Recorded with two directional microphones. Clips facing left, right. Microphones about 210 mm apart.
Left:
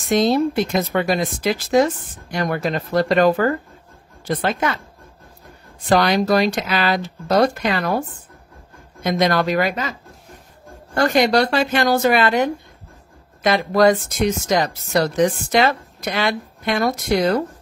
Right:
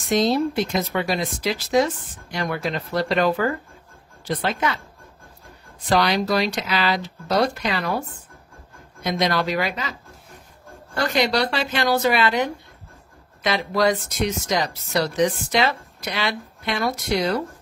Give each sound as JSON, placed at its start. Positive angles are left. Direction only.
{"t": 0.1, "sound": "speech", "side_deg": 55}
{"t": 5.9, "sound": "speech", "side_deg": 50}
{"t": 9.0, "sound": "speech", "side_deg": 50}
{"t": 11.0, "sound": "speech", "side_deg": 50}